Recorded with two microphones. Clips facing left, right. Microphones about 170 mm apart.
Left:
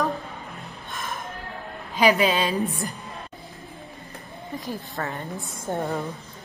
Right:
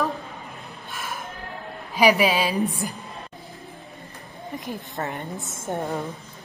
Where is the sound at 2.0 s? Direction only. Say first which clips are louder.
Right 1 dB; 10° right (ahead or behind).